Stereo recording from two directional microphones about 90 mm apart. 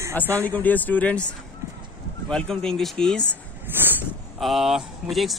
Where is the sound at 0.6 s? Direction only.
20° left (ahead or behind).